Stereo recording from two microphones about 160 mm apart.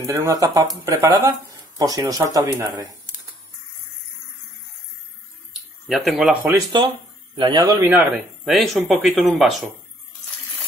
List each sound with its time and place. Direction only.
0.0 s speech: 20° right (ahead or behind)
5.9 s speech: centre (ahead or behind)
6.7 s speech: 25° right (ahead or behind)
7.8 s speech: 10° right (ahead or behind)
8.1 s speech: centre (ahead or behind)